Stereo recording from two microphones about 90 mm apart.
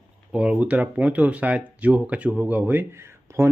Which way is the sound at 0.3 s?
10° right (ahead or behind).